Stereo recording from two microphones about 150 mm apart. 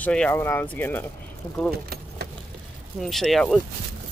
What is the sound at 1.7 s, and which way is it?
Keys jangling, 90° right.